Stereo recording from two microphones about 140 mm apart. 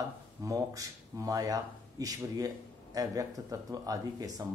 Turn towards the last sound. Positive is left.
turn(degrees=-25)  # may be behind; listen again after turning